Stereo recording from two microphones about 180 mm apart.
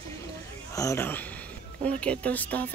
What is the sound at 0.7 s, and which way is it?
Speech, 15° left (ahead or behind).